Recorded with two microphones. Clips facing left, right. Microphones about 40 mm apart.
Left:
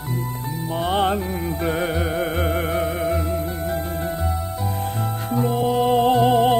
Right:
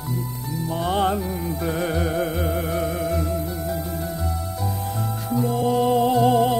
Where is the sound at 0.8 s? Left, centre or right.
Left.